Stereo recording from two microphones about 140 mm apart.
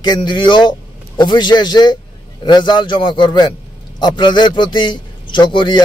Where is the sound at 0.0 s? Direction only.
30° left (ahead or behind).